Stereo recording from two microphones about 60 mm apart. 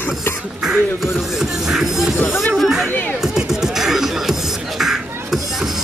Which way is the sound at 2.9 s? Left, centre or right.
Left.